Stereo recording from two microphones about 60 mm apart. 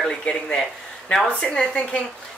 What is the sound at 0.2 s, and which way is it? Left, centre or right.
Speech, centre.